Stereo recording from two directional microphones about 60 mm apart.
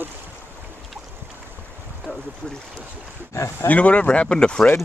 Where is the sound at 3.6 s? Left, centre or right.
Left.